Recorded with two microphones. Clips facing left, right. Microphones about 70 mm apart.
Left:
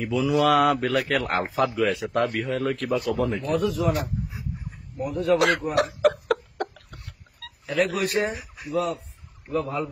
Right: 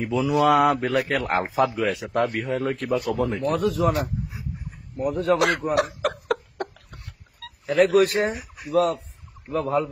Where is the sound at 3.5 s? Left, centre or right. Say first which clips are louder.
Right 1 dB; right.